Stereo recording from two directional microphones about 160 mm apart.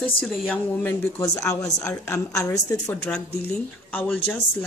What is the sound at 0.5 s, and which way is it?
Speech, 15° left (ahead or behind).